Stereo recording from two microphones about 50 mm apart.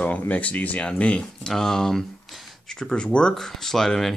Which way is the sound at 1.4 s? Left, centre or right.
Centre.